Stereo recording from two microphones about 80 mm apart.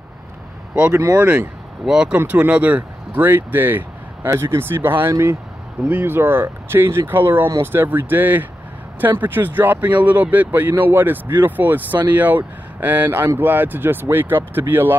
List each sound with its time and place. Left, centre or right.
1.1 s speech: centre